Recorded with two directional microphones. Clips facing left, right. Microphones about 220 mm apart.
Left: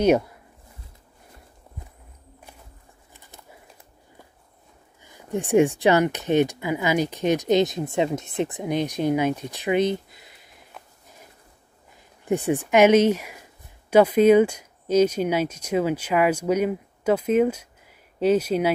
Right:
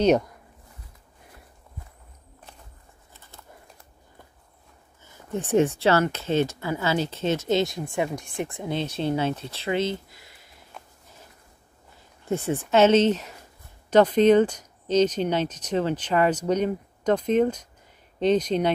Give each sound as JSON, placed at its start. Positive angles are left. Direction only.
{"t": 0.0, "sound": "speech", "side_deg": 10}
{"t": 5.0, "sound": "speech", "side_deg": 15}
{"t": 12.3, "sound": "speech", "side_deg": 15}